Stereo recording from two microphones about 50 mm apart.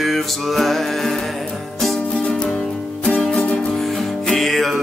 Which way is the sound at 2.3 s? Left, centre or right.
Centre.